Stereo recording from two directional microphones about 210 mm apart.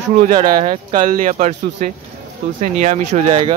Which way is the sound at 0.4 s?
25° right (ahead or behind).